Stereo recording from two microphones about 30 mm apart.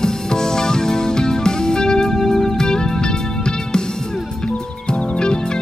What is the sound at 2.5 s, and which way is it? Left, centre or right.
Music, left.